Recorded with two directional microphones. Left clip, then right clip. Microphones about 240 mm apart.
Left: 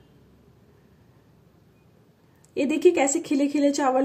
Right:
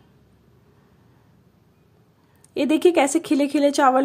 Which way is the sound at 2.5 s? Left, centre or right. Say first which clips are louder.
Right 2 dB; right.